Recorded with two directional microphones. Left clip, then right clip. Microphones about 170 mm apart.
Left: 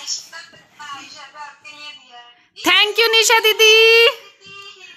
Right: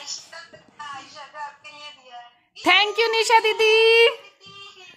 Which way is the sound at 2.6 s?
Centre (ahead or behind).